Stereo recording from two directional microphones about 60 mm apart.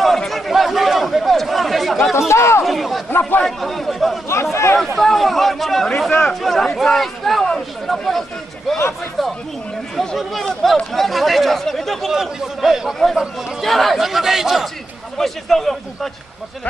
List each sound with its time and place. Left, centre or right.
0.0 s chatter: centre
2.1 s a sound: left
2.6 s chatter: centre
3.1 s a man's voice: left
3.4 s a man's voice: centre
4.3 s speech: left
4.9 s speech: centre
7.4 s a sound: centre
9.9 s speech: centre
12.1 s a man's voice: centre
13.6 s speech: centre